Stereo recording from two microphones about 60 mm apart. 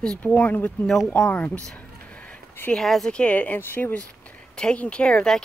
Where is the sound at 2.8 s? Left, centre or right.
Centre.